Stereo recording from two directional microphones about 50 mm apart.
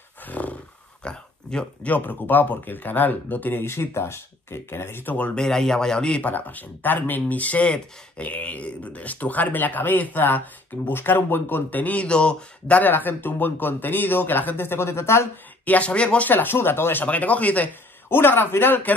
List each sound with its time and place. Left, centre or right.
0.2 s roar: left
1.0 s speech: centre
1.9 s speech: left
3.6 s speech: left
5.1 s speech: left
5.4 s speech: centre
6.2 s speech: left
12.1 s speech: left
12.8 s speech: left
15.6 s speech: left
16.3 s speech: left
17.0 s speech: left
18.1 s speech: left